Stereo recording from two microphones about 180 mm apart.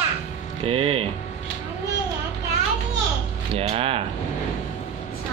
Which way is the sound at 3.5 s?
35° right (ahead or behind).